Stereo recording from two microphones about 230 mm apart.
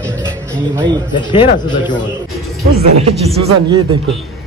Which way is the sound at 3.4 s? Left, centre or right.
Centre.